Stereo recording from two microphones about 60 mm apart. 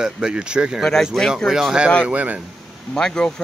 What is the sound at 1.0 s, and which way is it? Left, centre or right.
Speech, centre.